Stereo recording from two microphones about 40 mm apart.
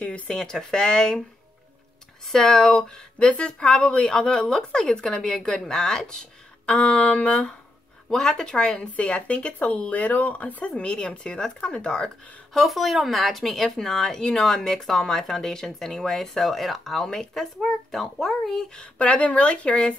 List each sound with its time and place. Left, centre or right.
0.3 s speech: centre
2.2 s speech: centre
8.1 s speech: centre
8.9 s speech: left
10.8 s speech: left
12.5 s speech: centre
18.8 s speech: left